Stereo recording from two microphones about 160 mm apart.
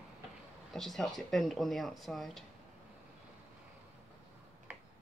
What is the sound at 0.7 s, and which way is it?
Speech, centre (ahead or behind).